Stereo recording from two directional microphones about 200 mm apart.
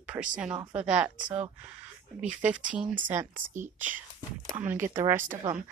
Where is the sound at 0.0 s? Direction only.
5° right (ahead or behind).